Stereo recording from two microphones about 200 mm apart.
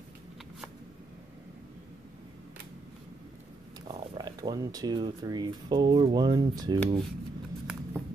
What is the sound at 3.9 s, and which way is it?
Speech, 20° right (ahead or behind).